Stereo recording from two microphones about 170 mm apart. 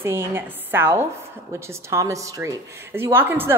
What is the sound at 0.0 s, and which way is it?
A woman's voice, 15° right (ahead or behind).